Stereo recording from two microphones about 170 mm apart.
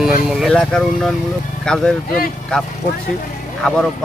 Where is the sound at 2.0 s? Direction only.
60° left (ahead or behind).